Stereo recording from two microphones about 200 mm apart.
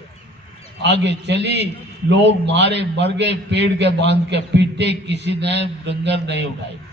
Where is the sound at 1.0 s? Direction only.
60° right (ahead or behind).